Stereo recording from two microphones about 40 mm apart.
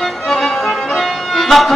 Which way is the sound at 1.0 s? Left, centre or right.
Centre.